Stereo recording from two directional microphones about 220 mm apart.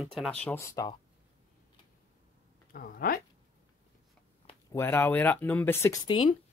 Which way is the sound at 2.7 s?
40° left (ahead or behind).